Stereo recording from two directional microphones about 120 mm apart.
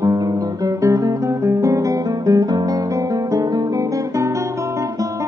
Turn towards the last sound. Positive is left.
turn(degrees=-25)  # may be behind; listen again after turning